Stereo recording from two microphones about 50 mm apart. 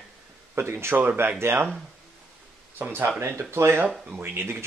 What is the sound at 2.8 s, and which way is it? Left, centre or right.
Speech, right.